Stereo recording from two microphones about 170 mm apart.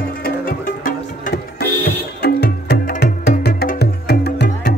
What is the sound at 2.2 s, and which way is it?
Music, 75° left (ahead or behind).